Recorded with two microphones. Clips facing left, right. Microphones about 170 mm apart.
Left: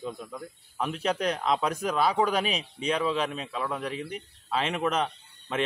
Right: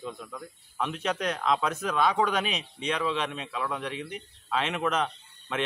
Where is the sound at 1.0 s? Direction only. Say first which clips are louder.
Left 3 dB; 35° left (ahead or behind).